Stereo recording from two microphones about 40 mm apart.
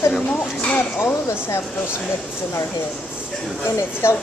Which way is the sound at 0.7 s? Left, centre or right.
Left.